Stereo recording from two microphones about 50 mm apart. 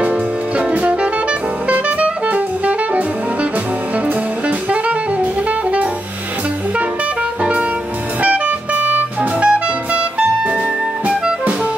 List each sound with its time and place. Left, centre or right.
1.7 s music: right
4.6 s jazz: right
8.2 s music: right